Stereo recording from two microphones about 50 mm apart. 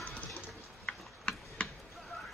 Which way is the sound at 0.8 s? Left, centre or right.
Left.